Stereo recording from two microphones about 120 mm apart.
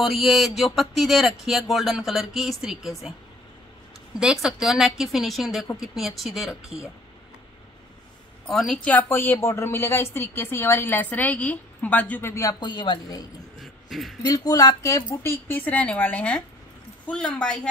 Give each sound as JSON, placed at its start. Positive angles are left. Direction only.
{"t": 0.0, "sound": "a woman's voice", "side_deg": 0}
{"t": 4.2, "sound": "a woman's voice", "side_deg": -5}
{"t": 8.5, "sound": "a woman's voice", "side_deg": 0}
{"t": 8.8, "sound": "a woman's voice", "side_deg": 15}
{"t": 12.5, "sound": "a woman's voice", "side_deg": 40}
{"t": 13.6, "sound": "a sound", "side_deg": 0}
{"t": 14.2, "sound": "a woman's voice", "side_deg": 30}